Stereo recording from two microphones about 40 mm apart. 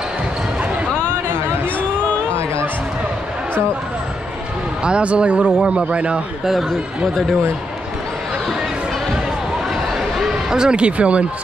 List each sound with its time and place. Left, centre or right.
4.8 s a man's voice: right
9.9 s a sound: centre
10.5 s speech: centre
10.8 s a man's voice: right